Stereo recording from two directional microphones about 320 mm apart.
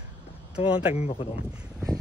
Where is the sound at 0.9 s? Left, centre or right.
Centre.